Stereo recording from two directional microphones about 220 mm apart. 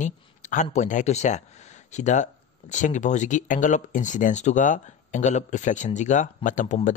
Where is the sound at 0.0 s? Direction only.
35° left (ahead or behind).